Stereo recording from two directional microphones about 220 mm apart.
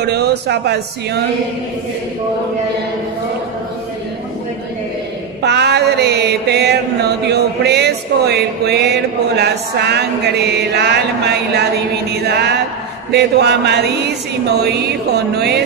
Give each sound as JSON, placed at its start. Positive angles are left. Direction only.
{"t": 0.0, "sound": "mantra", "side_deg": -50}
{"t": 5.4, "sound": "mantra", "side_deg": -50}